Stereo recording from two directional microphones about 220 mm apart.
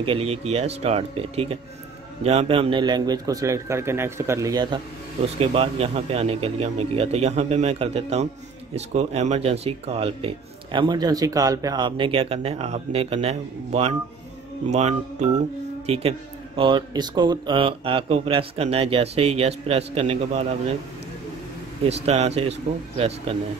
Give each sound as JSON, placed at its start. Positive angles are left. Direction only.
{"t": 0.0, "sound": "a man's voice", "side_deg": -25}
{"t": 5.4, "sound": "speech", "side_deg": -25}
{"t": 21.8, "sound": "speech", "side_deg": -30}